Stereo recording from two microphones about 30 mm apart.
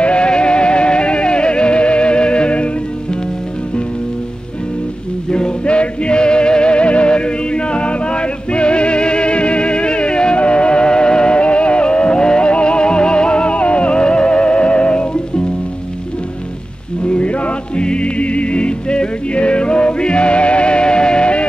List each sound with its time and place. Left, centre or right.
0.0 s music: left
5.3 s music: left
17.0 s music: left